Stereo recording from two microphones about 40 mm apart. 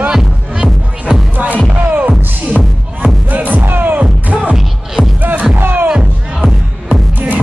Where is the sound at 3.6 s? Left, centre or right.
Right.